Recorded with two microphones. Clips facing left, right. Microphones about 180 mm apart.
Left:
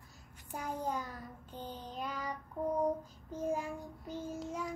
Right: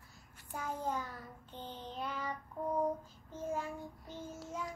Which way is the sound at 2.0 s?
10° left (ahead or behind).